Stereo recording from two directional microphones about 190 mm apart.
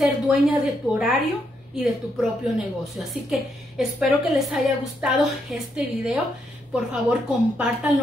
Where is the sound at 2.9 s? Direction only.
Centre (ahead or behind).